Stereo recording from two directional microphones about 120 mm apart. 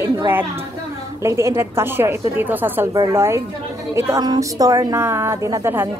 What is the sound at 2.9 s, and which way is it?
A woman's voice, 25° right (ahead or behind).